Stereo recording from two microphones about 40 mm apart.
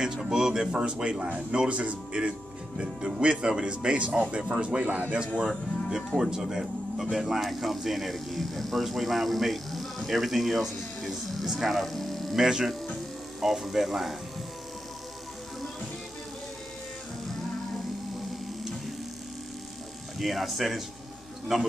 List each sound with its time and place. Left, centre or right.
0.0 s a sound: centre
0.7 s a man's voice: right
5.5 s speech: centre
12.4 s speech: centre
20.2 s speech: centre